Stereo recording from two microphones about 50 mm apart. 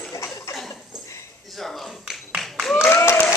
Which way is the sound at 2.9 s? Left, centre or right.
Left.